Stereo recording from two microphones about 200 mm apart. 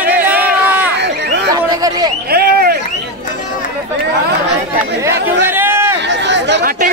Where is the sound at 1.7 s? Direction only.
20° right (ahead or behind).